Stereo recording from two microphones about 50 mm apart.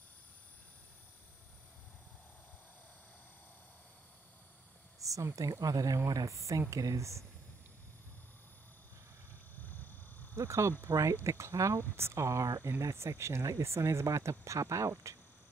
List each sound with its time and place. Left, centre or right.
5.2 s speech: right
9.6 s a sound: left
10.4 s speech: right
12.0 s speech: right